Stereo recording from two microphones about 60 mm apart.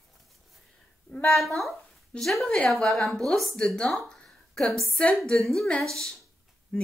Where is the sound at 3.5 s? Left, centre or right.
Centre.